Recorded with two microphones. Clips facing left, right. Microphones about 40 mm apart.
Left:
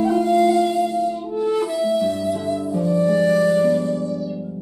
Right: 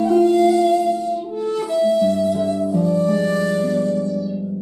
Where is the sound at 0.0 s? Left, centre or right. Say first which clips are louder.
Right 2 dB; centre.